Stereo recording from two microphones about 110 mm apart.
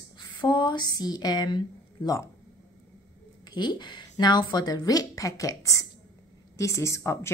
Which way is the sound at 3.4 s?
40° left (ahead or behind).